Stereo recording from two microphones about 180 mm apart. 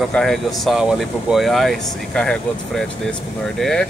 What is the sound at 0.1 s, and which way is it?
Speech, centre (ahead or behind).